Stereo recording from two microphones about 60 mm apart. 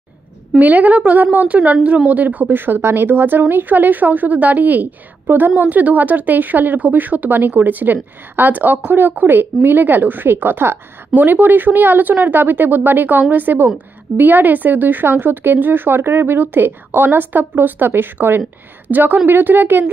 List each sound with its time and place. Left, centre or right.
0.6 s a woman's voice: right